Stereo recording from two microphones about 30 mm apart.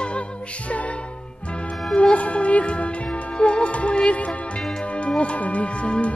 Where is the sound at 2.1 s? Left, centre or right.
Left.